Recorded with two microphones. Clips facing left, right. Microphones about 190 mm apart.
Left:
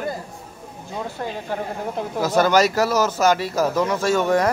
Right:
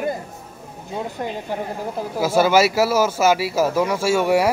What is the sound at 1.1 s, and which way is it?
Speech, 15° right (ahead or behind).